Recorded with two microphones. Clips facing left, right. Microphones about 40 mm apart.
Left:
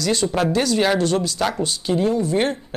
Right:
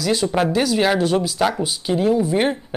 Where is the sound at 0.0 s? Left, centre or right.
Centre.